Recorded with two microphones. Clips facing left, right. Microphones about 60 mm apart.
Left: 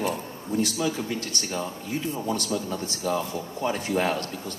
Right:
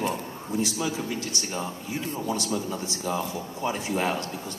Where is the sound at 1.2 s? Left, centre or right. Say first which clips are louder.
Even; left.